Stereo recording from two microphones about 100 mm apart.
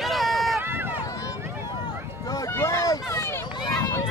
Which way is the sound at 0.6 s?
20° right (ahead or behind).